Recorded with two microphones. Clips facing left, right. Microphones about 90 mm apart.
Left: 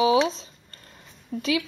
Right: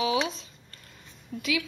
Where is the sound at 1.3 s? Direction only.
35° left (ahead or behind).